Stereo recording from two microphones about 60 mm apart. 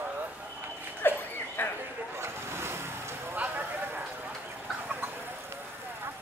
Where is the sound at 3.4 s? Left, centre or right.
Right.